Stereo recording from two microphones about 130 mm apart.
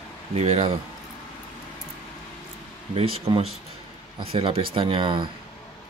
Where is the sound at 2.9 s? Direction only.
45° right (ahead or behind).